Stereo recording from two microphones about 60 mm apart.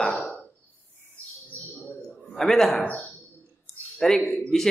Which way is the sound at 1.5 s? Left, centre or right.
Left.